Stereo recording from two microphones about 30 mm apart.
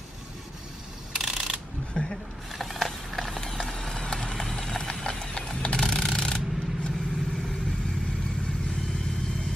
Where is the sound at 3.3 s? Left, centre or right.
Centre.